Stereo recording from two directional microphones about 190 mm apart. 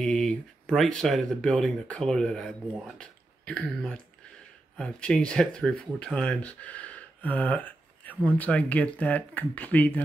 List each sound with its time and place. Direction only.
0.0 s speech: 5° left (ahead or behind)